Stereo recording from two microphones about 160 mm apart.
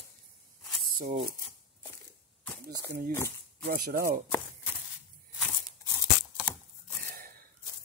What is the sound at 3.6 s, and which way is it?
Speech, 65° right (ahead or behind).